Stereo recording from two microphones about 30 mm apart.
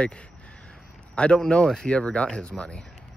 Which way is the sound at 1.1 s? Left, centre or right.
Left.